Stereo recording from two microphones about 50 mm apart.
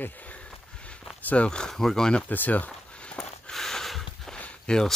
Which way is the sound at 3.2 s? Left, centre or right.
Centre.